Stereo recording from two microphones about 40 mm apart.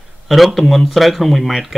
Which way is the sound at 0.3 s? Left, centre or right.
Centre.